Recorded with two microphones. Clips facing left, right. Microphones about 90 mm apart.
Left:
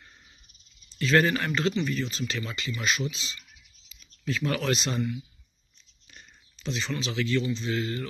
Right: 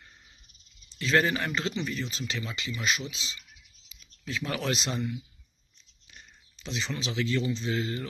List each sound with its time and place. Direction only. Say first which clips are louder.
0.9 s speech: left 2 dB; 15° right (ahead or behind)
6.0 s speech: left 1 dB; 10° right (ahead or behind)